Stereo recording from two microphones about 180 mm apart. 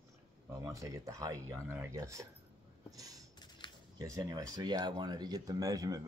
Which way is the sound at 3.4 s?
25° left (ahead or behind).